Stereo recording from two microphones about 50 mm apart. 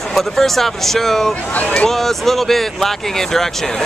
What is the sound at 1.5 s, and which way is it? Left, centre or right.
Speech, left.